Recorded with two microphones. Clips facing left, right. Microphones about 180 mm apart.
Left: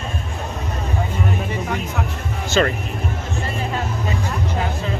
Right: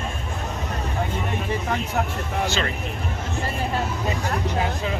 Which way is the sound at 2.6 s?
50° left (ahead or behind).